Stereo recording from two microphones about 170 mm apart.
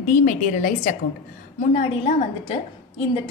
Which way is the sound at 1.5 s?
35° left (ahead or behind).